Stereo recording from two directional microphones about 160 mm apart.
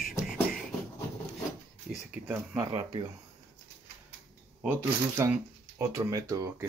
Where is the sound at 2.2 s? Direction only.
10° right (ahead or behind).